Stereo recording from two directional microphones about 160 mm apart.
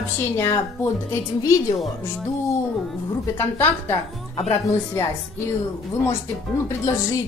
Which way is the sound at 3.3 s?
15° left (ahead or behind).